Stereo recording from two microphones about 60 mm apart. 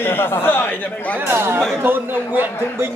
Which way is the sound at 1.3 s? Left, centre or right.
Right.